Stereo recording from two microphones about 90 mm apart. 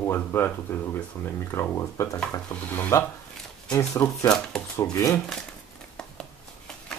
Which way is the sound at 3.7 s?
40° left (ahead or behind).